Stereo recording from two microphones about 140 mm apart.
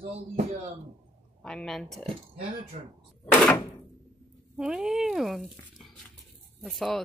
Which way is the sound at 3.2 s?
10° left (ahead or behind).